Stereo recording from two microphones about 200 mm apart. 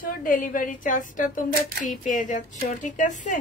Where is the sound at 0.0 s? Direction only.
45° left (ahead or behind).